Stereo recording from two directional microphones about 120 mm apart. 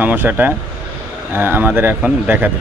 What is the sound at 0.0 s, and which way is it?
Speech, 15° right (ahead or behind).